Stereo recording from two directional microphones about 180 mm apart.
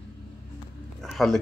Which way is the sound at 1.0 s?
Centre (ahead or behind).